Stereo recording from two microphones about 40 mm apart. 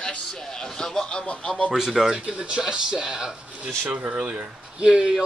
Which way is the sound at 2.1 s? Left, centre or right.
Right.